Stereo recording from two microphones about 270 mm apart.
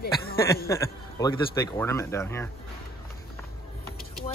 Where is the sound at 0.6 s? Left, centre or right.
Centre.